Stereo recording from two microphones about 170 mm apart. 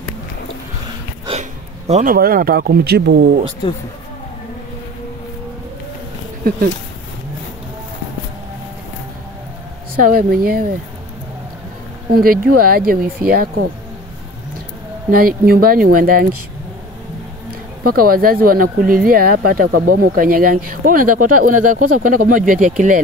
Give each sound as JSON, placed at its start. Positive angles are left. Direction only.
{"t": 1.4, "sound": "a sound", "side_deg": -45}
{"t": 2.1, "sound": "speech", "side_deg": -60}
{"t": 10.0, "sound": "speech", "side_deg": -60}
{"t": 12.1, "sound": "speech", "side_deg": -60}
{"t": 15.0, "sound": "speech", "side_deg": -60}
{"t": 18.0, "sound": "speech", "side_deg": -60}